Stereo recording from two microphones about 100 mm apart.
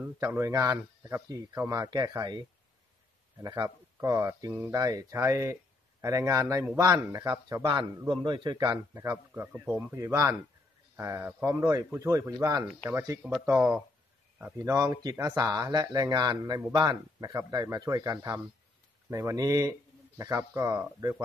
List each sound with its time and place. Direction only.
0.0 s speech: 25° right (ahead or behind); by 2.4 s 40° right (ahead or behind)
3.4 s a man's voice: 40° right (ahead or behind)
9.3 s speech: 20° right (ahead or behind)
9.9 s speech: 30° right (ahead or behind)
13.5 s speech: 20° right (ahead or behind)
14.6 s a man's voice: 30° right (ahead or behind); by 17.0 s 50° right (ahead or behind)
17.2 s speech: 35° right (ahead or behind)